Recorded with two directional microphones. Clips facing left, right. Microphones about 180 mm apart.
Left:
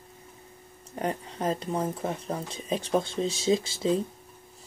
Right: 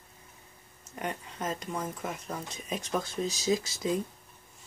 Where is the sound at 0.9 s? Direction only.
35° left (ahead or behind).